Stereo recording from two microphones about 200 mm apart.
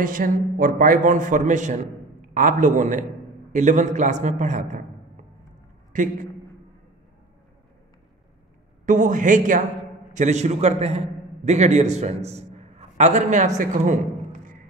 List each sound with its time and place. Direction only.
0.0 s a man's voice: 45° right (ahead or behind)
5.9 s a man's voice: 40° right (ahead or behind)
8.8 s a man's voice: 40° right (ahead or behind)